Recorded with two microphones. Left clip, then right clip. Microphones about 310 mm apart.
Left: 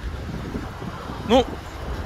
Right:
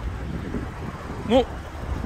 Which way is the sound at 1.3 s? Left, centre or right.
Centre.